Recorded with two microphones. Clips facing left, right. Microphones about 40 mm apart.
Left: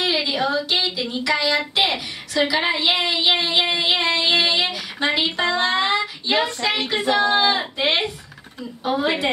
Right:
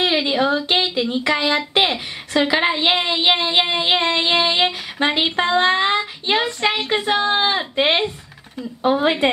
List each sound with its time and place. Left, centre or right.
0.0 s a woman's voice: right